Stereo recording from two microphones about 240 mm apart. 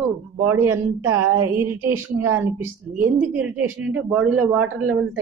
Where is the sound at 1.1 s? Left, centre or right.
Right.